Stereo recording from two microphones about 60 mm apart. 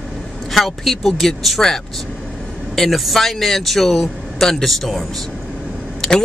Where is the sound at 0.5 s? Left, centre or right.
Centre.